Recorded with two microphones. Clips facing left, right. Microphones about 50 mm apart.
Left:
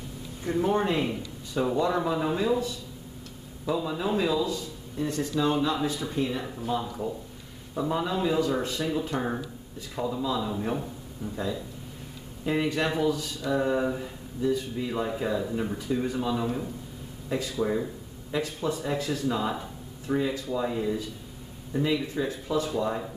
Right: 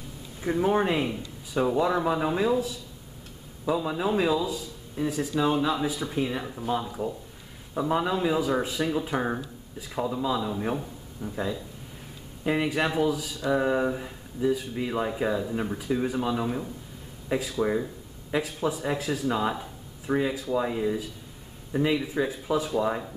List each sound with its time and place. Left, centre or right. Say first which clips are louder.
0.4 s a man's voice: right 2 dB; centre